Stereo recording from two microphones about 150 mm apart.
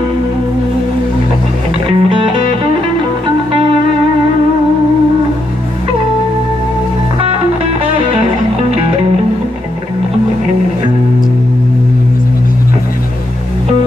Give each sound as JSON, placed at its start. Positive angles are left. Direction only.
{"t": 1.9, "sound": "music", "side_deg": -35}